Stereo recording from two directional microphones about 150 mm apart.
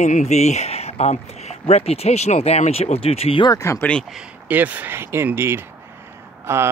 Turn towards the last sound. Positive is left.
turn(degrees=-15)  # may be behind; listen again after turning